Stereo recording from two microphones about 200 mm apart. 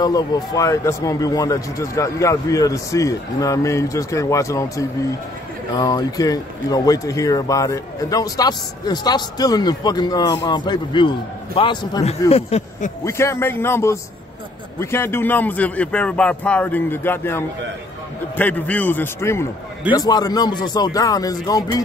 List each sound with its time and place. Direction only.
0.0 s a man's voice: 20° left (ahead or behind)
13.0 s a man's voice: 15° left (ahead or behind)